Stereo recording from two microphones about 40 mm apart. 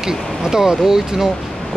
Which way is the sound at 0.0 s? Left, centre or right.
Centre.